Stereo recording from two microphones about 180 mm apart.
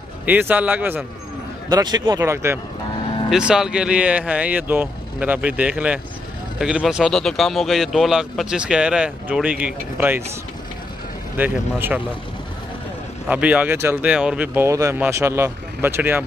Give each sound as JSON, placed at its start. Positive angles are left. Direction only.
{"t": 0.2, "sound": "speech", "side_deg": -10}
{"t": 1.7, "sound": "speech", "side_deg": -20}
{"t": 3.3, "sound": "speech", "side_deg": -5}
{"t": 11.3, "sound": "speech", "side_deg": -10}
{"t": 13.3, "sound": "speech", "side_deg": -5}